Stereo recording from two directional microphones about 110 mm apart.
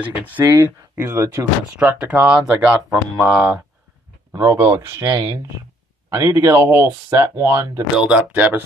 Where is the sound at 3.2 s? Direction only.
10° right (ahead or behind).